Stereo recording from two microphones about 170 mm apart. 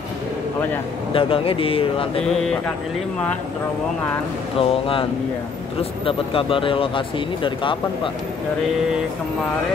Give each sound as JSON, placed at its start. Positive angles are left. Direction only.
{"t": 1.1, "sound": "speech", "side_deg": 30}
{"t": 4.6, "sound": "speech", "side_deg": 30}